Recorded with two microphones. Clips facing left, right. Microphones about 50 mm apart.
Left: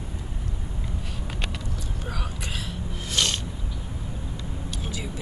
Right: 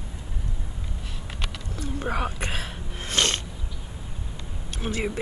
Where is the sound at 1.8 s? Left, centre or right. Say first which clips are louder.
Right 12 dB; right.